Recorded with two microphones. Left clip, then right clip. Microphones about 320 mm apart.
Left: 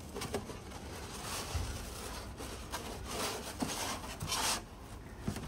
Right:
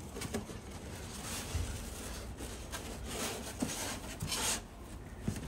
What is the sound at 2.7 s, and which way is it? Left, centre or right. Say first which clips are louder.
Rub: left 2 dB; centre.